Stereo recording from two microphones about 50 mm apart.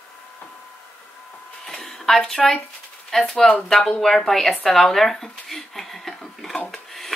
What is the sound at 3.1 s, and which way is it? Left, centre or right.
A woman's voice, centre.